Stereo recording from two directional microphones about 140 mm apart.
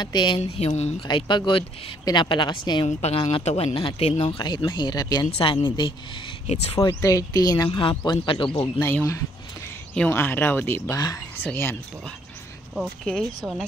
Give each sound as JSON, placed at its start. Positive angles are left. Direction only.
{"t": 0.0, "sound": "speech", "side_deg": 30}
{"t": 0.6, "sound": "speech", "side_deg": 50}
{"t": 1.0, "sound": "speech", "side_deg": 30}
{"t": 3.0, "sound": "speech", "side_deg": 45}
{"t": 4.3, "sound": "speech", "side_deg": 30}
{"t": 6.4, "sound": "speech", "side_deg": 50}
{"t": 6.8, "sound": "speech", "side_deg": 25}
{"t": 8.9, "sound": "speech", "side_deg": 20}
{"t": 12.7, "sound": "speech", "side_deg": 5}
{"t": 13.4, "sound": "speech", "side_deg": -5}